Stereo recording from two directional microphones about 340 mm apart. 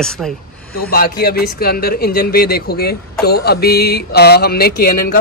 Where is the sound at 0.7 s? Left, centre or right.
Left.